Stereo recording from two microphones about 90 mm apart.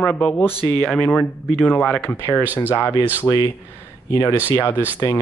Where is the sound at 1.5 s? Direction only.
25° left (ahead or behind).